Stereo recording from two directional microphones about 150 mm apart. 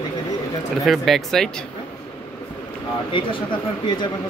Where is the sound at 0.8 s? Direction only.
Centre (ahead or behind).